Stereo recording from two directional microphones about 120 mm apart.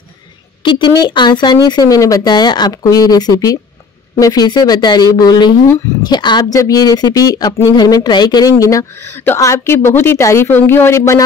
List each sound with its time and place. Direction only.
0.7 s speech: 40° left (ahead or behind)